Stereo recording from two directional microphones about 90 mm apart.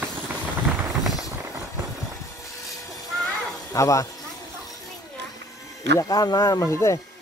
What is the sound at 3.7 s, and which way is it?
Speech, 35° left (ahead or behind).